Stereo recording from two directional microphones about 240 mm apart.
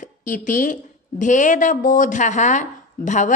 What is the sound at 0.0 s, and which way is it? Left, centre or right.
A woman's voice, left.